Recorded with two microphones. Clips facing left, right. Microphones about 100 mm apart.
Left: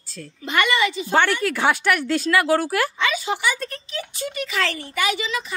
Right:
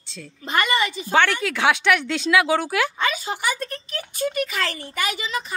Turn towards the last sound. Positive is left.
turn(degrees=-45)  # may be behind; listen again after turning